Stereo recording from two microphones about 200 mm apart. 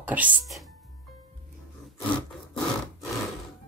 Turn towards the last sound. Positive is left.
turn(degrees=5)  # may be behind; listen again after turning